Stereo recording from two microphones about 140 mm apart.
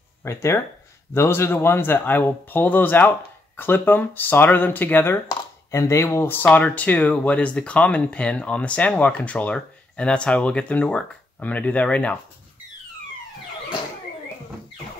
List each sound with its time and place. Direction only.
0.2 s speech: 20° left (ahead or behind)